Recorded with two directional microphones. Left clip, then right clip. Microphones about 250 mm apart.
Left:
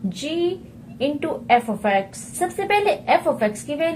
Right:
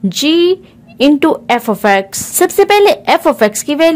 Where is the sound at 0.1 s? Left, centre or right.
Right.